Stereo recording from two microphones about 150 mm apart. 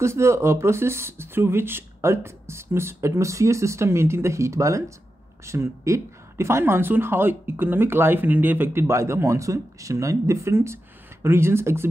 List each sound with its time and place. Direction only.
0.0 s speech: 20° right (ahead or behind)